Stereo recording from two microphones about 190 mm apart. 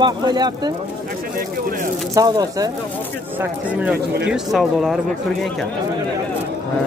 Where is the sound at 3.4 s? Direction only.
5° right (ahead or behind).